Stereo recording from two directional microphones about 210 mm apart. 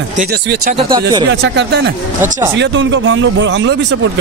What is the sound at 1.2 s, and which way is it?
A man's voice, 55° right (ahead or behind).